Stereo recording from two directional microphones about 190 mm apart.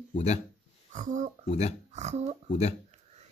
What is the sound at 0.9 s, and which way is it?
Speech, 40° right (ahead or behind).